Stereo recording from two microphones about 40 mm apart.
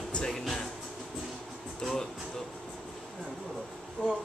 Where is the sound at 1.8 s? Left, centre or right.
Centre.